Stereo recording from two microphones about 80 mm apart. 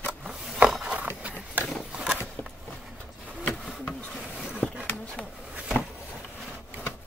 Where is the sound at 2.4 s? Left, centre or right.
Left.